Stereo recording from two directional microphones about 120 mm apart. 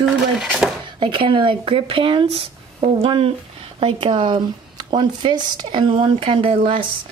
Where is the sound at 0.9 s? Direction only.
45° right (ahead or behind).